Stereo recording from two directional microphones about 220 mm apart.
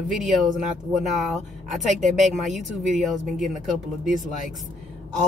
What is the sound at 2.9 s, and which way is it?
Speech, centre (ahead or behind).